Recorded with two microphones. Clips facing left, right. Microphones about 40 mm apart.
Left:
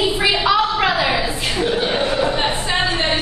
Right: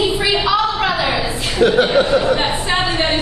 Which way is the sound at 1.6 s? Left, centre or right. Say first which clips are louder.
Right 8 dB; right.